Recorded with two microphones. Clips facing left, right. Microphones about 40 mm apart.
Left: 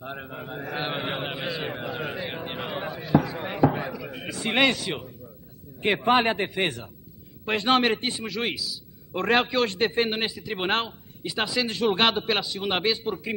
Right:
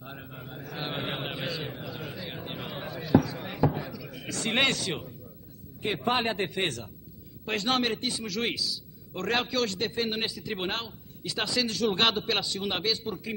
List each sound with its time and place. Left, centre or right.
0.0 s mantra: left
0.9 s chant: centre
1.6 s a man's voice: left
2.8 s a man's voice: centre
3.2 s basketball bounce: left
4.3 s a man's voice: centre
5.8 s a man's voice: left
6.2 s a man's voice: centre
8.5 s a man's voice: centre
9.1 s a man's voice: left
11.2 s a man's voice: centre
12.6 s a man's voice: left